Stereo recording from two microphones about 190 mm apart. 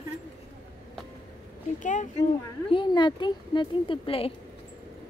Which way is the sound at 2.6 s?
25° left (ahead or behind).